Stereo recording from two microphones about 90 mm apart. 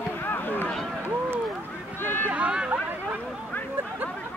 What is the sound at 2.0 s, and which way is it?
Run, 25° left (ahead or behind).